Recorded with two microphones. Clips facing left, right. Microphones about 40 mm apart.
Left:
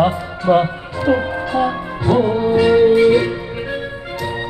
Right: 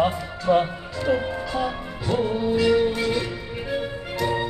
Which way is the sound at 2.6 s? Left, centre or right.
Left.